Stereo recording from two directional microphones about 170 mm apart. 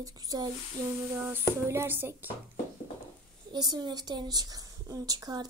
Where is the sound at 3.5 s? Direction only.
25° right (ahead or behind).